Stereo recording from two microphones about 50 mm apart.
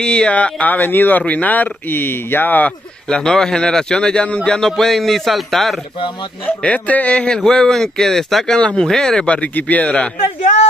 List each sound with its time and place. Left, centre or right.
0.0 s speech: centre; by 2.7 s left
3.1 s speech: centre
4.6 s a man's voice: centre
6.6 s a man's voice: left
7.3 s speech: centre
8.5 s a man's voice: centre
9.3 s a man's voice: left